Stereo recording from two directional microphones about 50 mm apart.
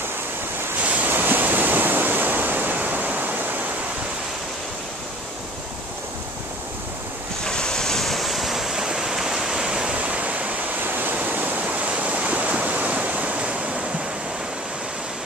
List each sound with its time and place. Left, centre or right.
0.8 s waves: right
7.4 s waves: centre
8.8 s waterfall: centre; by 10.6 s right
10.8 s waves: right